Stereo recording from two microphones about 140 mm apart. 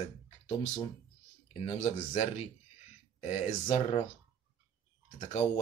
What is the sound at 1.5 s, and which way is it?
Speech, 50° left (ahead or behind).